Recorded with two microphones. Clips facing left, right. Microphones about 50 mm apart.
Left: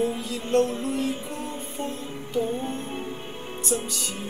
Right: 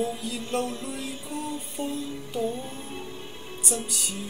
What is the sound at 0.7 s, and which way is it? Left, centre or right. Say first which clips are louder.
Music: left 7 dB; left.